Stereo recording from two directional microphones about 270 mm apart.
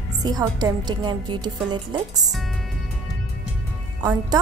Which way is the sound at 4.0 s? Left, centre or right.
Centre.